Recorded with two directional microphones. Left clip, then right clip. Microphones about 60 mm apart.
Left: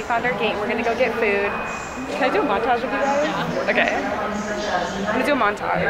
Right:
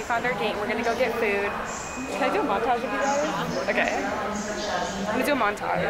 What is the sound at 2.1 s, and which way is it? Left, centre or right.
Speech, centre.